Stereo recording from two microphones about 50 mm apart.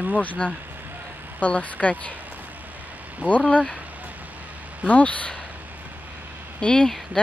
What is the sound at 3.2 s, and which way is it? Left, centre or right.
Speech, right.